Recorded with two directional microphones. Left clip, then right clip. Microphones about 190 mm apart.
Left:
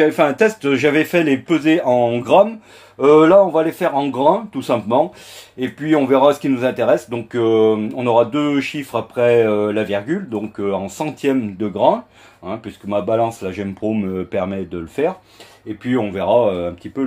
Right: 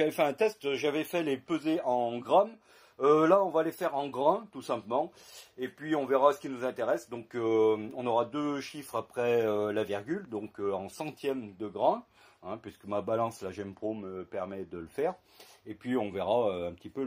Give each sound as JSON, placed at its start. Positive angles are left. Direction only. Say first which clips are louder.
{"t": 0.0, "sound": "speech", "louder": "left 13 dB", "side_deg": -35}
{"t": 7.4, "sound": "speech", "louder": "left 12 dB", "side_deg": -30}
{"t": 12.4, "sound": "speech", "louder": "left 12 dB", "side_deg": -35}
{"t": 15.0, "sound": "speech", "louder": "left 13 dB", "side_deg": -30}
{"t": 15.8, "sound": "speech", "louder": "left 12 dB", "side_deg": -45}